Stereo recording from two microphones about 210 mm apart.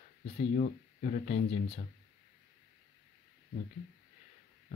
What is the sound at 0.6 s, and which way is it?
Speech, 35° left (ahead or behind).